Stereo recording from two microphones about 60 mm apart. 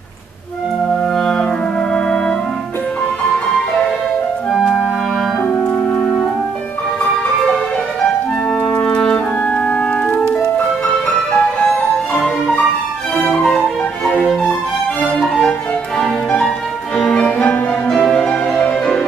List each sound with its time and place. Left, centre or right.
0.8 s music: centre
5.9 s music: left
8.6 s clarinet: centre
11.3 s music: centre
15.0 s music: centre
16.3 s music: centre